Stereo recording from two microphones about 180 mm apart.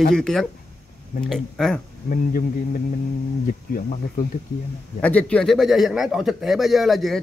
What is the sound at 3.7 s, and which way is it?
Speech, 50° left (ahead or behind).